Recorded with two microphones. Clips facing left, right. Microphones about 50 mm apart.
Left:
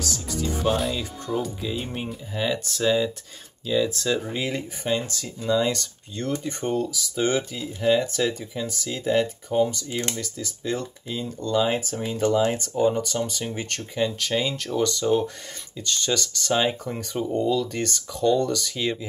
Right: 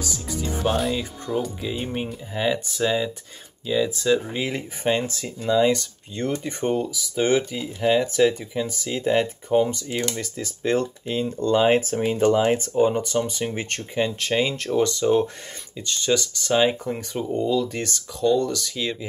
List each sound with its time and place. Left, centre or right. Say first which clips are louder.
0.0 s music: even; centre
0.9 s speech: right 2 dB; centre; by 11.2 s right
11.2 s speech: right 4 dB; right; by 18.9 s centre